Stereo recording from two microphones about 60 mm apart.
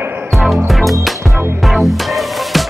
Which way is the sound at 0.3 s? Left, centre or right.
Centre.